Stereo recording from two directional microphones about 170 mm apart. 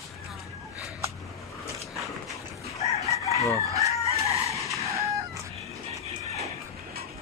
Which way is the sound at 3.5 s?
20° right (ahead or behind).